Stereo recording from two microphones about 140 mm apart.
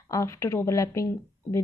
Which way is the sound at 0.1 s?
20° left (ahead or behind).